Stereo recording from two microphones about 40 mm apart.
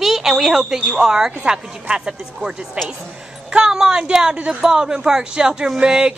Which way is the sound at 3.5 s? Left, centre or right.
Centre.